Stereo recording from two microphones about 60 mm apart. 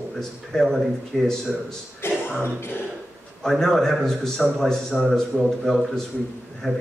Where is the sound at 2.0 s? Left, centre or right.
Left.